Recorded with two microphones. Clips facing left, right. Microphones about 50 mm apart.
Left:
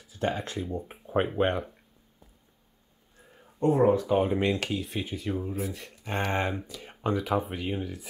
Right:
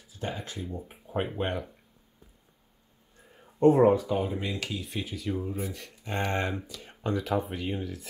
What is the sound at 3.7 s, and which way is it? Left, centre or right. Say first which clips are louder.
Speech: even; centre.